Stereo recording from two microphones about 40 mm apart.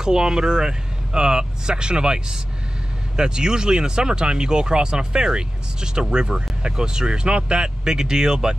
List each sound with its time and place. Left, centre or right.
0.0 s speech: centre